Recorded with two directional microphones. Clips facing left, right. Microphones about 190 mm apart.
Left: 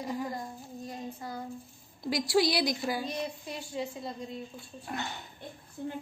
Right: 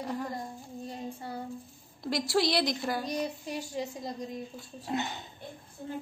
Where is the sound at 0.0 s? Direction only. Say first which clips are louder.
Even; centre (ahead or behind).